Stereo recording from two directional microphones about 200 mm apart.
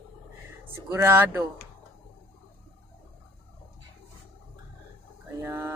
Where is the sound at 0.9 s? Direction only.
10° right (ahead or behind).